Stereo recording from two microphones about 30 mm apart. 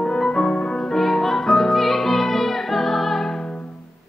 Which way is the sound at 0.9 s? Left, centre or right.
Centre.